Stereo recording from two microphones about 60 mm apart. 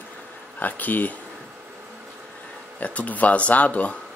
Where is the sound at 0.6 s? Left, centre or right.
Left.